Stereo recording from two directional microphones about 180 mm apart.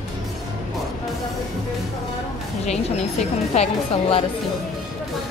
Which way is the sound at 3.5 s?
35° left (ahead or behind).